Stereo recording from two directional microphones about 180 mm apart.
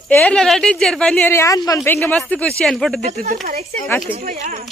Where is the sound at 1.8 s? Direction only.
5° left (ahead or behind).